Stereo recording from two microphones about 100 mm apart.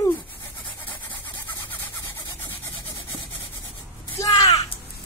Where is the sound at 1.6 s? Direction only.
20° left (ahead or behind).